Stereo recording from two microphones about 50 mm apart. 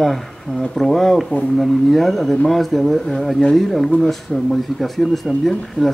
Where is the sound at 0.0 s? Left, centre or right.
Centre.